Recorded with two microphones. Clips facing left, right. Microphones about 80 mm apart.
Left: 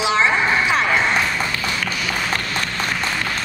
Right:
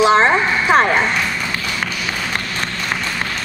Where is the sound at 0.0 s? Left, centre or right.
Right.